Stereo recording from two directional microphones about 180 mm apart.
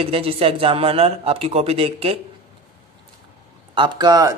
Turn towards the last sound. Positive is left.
turn(degrees=-20)  # may be behind; listen again after turning